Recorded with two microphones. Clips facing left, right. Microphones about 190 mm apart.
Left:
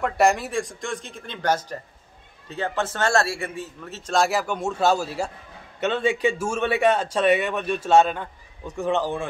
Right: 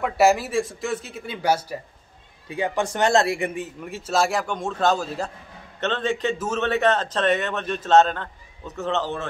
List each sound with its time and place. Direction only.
0.0 s a man's voice: 5° right (ahead or behind)
4.1 s a man's voice: centre (ahead or behind)